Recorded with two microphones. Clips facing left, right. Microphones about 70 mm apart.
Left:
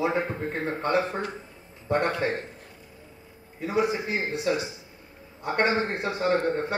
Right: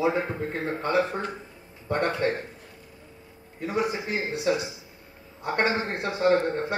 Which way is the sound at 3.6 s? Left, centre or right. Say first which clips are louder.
Left 2 dB; centre.